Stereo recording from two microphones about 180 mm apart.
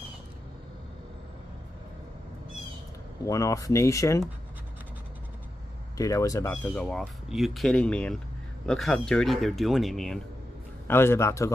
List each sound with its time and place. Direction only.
3.3 s speech: 20° left (ahead or behind)
5.9 s speech: 20° left (ahead or behind)
6.5 s speech: 5° left (ahead or behind)
10.9 s speech: 15° left (ahead or behind)